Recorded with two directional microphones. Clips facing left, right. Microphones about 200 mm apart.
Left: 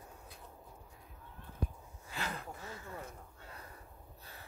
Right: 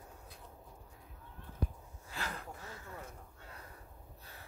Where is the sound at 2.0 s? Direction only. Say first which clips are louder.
Left 2 dB; 20° left (ahead or behind).